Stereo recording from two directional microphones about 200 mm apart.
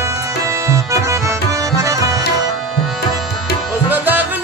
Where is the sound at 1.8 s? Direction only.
15° right (ahead or behind).